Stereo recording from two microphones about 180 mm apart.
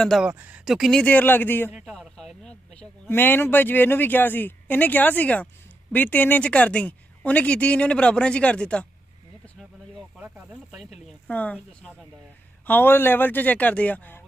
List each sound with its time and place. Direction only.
0.0 s speech: centre (ahead or behind)
1.7 s a man's voice: 5° right (ahead or behind)
9.6 s snake: centre (ahead or behind)
11.1 s a sound: 5° left (ahead or behind)
12.6 s a man's voice: 10° left (ahead or behind)